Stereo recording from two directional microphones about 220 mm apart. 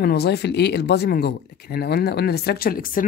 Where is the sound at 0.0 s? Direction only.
45° left (ahead or behind).